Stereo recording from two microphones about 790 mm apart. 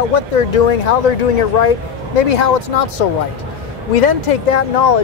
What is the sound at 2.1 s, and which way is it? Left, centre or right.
Speech, left.